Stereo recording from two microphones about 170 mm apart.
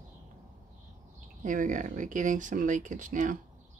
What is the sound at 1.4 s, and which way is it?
Speech, 50° right (ahead or behind).